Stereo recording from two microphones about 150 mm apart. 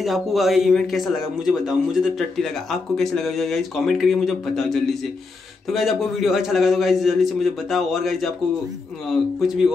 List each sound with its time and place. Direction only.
0.0 s speech: centre (ahead or behind)